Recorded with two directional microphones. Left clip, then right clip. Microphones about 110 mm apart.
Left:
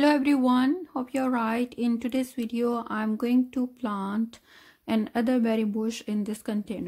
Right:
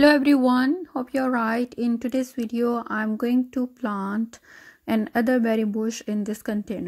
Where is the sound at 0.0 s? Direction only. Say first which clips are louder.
Right 5 dB; 55° right (ahead or behind).